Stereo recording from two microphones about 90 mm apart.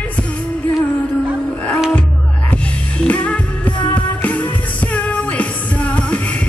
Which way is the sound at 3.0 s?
15° left (ahead or behind).